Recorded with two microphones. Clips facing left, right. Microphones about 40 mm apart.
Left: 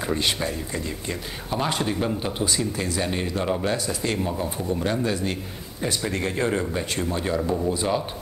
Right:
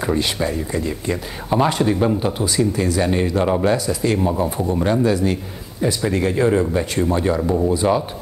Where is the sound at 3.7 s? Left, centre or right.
Centre.